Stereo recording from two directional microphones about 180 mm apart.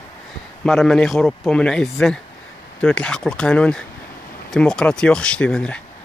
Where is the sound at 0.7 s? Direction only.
Centre (ahead or behind).